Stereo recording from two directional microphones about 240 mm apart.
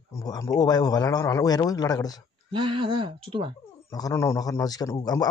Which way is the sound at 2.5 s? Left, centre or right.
Right.